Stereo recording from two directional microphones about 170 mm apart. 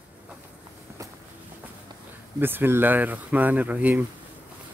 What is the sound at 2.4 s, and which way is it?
Speech, 10° right (ahead or behind).